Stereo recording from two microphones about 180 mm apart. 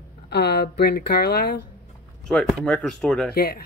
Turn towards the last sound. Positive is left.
turn(degrees=60)  # may be behind; listen again after turning